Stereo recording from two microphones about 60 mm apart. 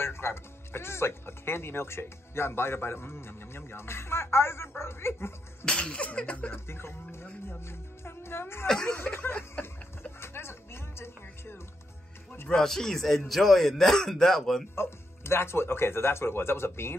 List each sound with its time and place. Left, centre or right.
0.0 s speech: left
5.7 s slap: centre
6.5 s speech: left
10.2 s music: left
12.5 s a man's voice: centre
14.8 s speech: left